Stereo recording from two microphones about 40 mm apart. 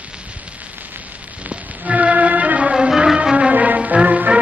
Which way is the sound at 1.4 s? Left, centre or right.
Right.